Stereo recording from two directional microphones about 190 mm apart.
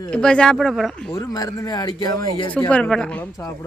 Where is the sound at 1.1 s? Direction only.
20° left (ahead or behind).